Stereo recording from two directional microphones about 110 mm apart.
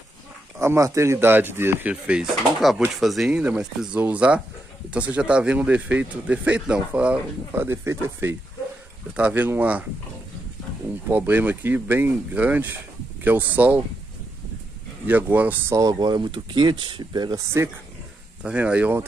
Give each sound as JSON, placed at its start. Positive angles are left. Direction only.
{"t": 0.6, "sound": "speech", "side_deg": -25}
{"t": 7.6, "sound": "speech", "side_deg": -25}
{"t": 11.1, "sound": "speech", "side_deg": -15}
{"t": 15.0, "sound": "speech", "side_deg": -15}
{"t": 15.7, "sound": "speech", "side_deg": -35}
{"t": 18.4, "sound": "speech", "side_deg": -10}